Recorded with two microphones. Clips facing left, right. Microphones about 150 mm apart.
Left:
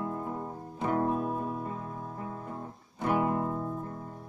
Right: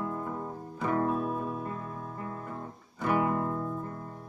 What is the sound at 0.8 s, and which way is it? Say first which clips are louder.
Music: even; 15° left (ahead or behind).